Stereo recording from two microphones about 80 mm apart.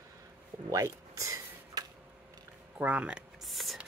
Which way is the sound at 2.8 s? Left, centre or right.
Centre.